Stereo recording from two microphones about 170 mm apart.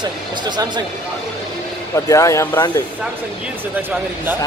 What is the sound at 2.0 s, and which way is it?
Speech, 20° left (ahead or behind).